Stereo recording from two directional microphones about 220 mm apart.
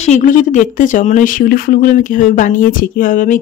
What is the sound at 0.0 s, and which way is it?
Speech, 35° left (ahead or behind).